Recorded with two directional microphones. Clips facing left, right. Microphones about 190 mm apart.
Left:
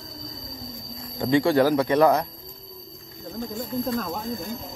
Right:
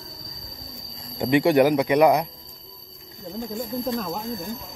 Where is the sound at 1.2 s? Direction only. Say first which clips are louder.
Right 2 dB; 20° right (ahead or behind).